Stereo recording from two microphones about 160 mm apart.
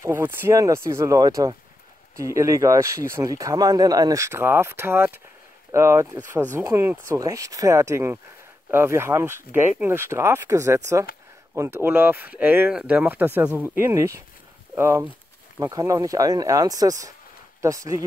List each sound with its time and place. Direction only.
0.0 s speech: 15° right (ahead or behind)